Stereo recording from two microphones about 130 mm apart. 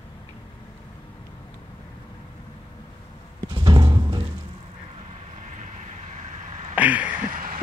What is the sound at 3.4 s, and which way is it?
Music, 35° right (ahead or behind).